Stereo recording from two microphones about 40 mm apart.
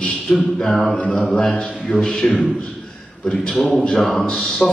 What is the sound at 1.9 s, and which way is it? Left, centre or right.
Speech, left.